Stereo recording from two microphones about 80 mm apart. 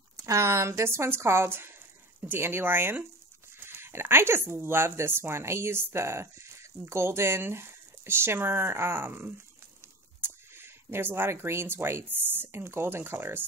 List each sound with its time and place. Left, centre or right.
0.2 s speech: right